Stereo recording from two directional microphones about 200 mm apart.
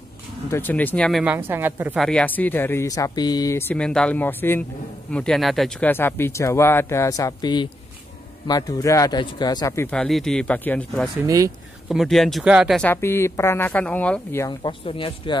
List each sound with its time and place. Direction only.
0.5 s speech: 10° left (ahead or behind)
1.2 s a woman's voice: 10° right (ahead or behind)
2.0 s speech: 5° left (ahead or behind)
11.2 s a woman's voice: 15° right (ahead or behind)
11.9 s speech: centre (ahead or behind)
14.6 s speech: 25° left (ahead or behind)